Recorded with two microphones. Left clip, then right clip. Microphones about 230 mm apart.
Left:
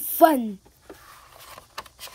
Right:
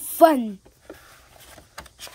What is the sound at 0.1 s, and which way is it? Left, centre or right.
Speech, centre.